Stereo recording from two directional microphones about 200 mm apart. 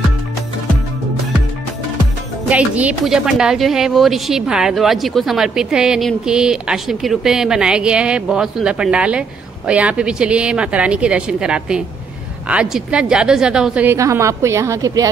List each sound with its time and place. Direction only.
2.5 s a woman's voice: 5° right (ahead or behind)